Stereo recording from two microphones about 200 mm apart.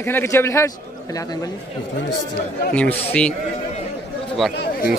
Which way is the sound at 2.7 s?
5° left (ahead or behind).